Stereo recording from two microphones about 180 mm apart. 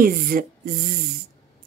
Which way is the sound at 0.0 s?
55° right (ahead or behind).